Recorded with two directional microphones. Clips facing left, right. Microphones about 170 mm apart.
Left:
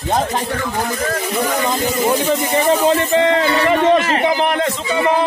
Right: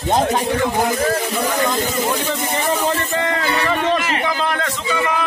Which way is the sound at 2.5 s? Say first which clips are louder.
Left 6 dB; 20° left (ahead or behind).